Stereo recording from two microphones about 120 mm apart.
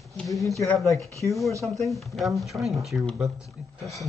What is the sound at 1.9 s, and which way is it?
Speech, centre (ahead or behind).